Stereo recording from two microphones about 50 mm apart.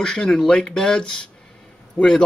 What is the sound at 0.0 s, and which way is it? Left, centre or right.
Speech, centre.